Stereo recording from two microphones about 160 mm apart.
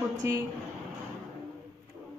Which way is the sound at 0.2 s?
20° right (ahead or behind).